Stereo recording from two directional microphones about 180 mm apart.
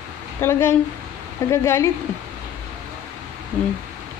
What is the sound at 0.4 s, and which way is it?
Speech, 15° left (ahead or behind).